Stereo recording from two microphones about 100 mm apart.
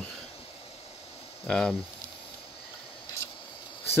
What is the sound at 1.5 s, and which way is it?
Speech, 5° left (ahead or behind).